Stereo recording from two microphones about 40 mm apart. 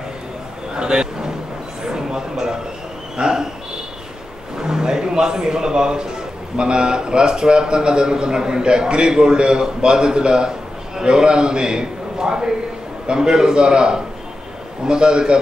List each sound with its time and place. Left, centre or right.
0.7 s a sound: right
3.2 s a man's voice: centre
4.6 s a man's voice: centre